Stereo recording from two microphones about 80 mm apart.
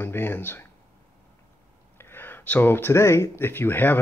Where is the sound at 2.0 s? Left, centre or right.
Left.